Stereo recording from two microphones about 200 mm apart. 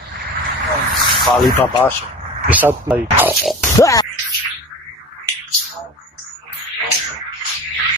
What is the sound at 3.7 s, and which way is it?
Speech, 15° left (ahead or behind).